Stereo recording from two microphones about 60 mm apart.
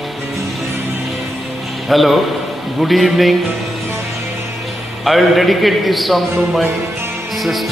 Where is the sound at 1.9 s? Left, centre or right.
Centre.